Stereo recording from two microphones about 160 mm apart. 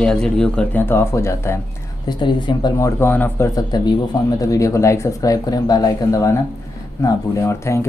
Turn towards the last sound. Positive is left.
turn(degrees=20)  # may be behind; listen again after turning